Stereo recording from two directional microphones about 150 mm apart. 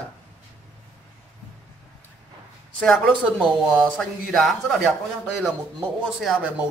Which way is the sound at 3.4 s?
Centre (ahead or behind).